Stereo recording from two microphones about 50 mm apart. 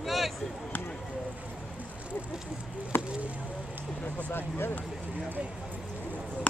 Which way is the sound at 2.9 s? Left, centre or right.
Left.